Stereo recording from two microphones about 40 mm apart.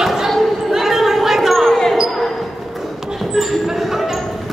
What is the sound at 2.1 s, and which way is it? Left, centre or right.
Basketball bounce, centre.